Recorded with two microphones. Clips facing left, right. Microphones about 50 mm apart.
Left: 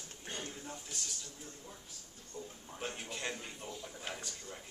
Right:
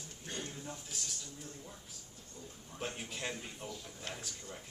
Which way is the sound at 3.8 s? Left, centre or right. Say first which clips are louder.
Left 2 dB; centre.